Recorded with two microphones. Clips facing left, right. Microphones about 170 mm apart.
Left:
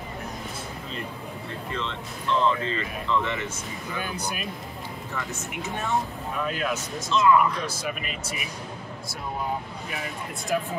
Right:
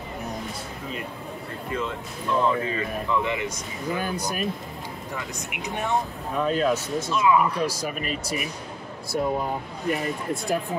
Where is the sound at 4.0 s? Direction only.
40° right (ahead or behind).